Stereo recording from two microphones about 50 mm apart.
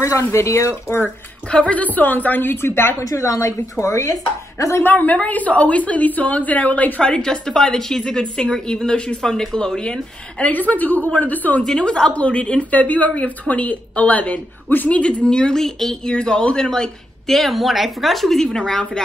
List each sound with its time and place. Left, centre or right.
0.0 s speech: left
1.5 s a woman's voice: left
3.0 s a woman's voice: left
4.6 s a woman's voice: left
4.9 s a woman's voice: left
7.0 s speech: centre
10.5 s a woman's voice: left
11.6 s a woman's voice: centre; by 15.0 s left
15.0 s speech: left; by 16.1 s centre
16.1 s speech: centre